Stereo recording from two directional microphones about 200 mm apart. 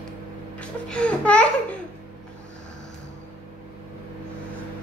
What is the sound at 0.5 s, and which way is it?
Babbling, 5° left (ahead or behind).